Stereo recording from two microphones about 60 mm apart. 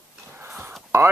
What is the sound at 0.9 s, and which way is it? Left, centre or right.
Speech, right.